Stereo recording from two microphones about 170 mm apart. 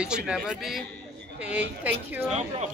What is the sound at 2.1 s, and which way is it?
Speech, 10° right (ahead or behind).